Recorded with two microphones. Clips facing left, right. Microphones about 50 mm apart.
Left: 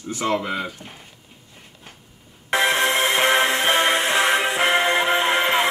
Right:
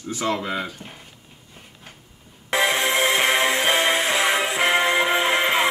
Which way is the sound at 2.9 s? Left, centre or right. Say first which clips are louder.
Even; left.